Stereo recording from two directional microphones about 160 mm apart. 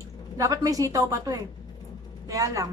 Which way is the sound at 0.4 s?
20° right (ahead or behind).